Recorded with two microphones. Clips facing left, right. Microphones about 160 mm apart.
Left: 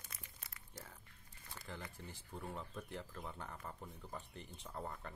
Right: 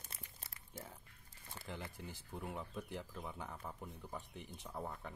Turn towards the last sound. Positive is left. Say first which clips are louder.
# right 1 dB
turn(degrees=-5)  # may be behind; listen again after turning